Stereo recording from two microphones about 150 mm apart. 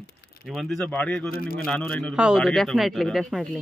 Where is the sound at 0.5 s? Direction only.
5° left (ahead or behind).